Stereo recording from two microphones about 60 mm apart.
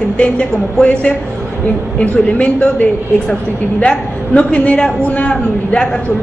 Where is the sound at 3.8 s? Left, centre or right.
Centre.